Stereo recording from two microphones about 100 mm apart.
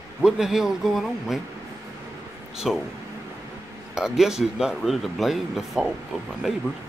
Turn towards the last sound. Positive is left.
turn(degrees=-5)  # may be behind; listen again after turning